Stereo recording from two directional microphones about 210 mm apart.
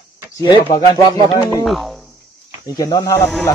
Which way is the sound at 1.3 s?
20° left (ahead or behind).